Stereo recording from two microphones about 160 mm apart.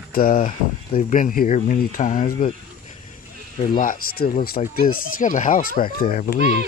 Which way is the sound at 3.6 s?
60° left (ahead or behind).